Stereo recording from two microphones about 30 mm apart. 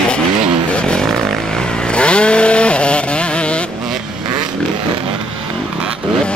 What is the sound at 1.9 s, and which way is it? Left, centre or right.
Chainsaw, left.